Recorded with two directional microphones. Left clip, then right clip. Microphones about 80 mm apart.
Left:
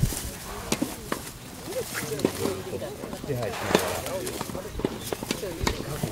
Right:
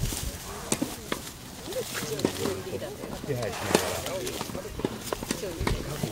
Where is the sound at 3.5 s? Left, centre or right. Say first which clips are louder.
Left 2 dB; centre.